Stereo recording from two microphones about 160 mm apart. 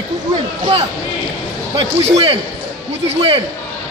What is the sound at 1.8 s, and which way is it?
A man's voice, 40° right (ahead or behind).